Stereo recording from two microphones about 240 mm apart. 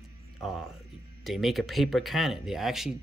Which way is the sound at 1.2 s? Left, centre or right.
Centre.